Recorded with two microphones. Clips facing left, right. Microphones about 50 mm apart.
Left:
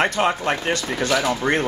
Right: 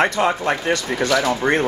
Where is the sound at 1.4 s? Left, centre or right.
Right.